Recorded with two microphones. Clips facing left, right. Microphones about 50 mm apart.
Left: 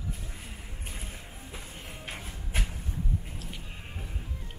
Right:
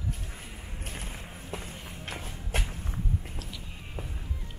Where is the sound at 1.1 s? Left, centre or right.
Centre.